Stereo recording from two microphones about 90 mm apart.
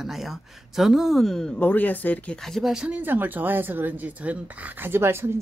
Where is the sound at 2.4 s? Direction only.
5° left (ahead or behind).